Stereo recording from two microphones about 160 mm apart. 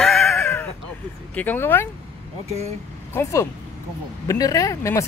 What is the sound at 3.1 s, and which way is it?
Speech, 15° left (ahead or behind).